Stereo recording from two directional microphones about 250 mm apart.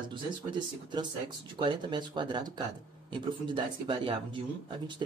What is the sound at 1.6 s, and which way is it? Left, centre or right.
Speech, centre.